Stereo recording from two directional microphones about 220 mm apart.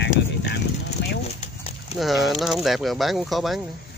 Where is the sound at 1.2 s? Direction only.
30° left (ahead or behind).